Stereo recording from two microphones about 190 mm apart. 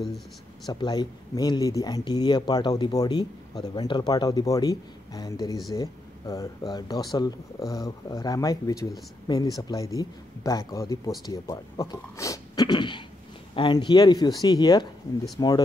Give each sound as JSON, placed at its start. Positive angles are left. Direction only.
{"t": 0.7, "sound": "speech", "side_deg": 20}